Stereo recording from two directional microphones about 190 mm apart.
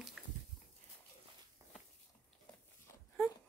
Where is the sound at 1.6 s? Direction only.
15° right (ahead or behind).